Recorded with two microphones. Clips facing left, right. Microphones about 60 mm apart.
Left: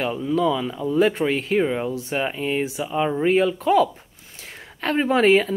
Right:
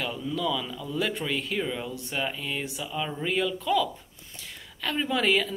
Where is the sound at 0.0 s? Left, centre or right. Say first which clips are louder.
Left 8 dB; left.